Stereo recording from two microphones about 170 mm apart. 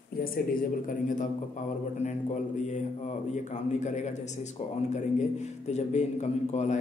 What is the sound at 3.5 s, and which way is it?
A man's voice, 45° left (ahead or behind).